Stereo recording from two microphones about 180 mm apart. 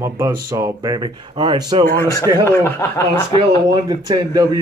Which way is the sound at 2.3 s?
20° left (ahead or behind).